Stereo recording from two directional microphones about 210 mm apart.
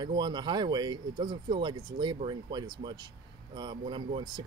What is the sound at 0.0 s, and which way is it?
Speech, 20° right (ahead or behind).